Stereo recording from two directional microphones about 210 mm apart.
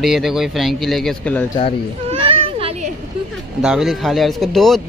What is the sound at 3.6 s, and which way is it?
Speech, centre (ahead or behind).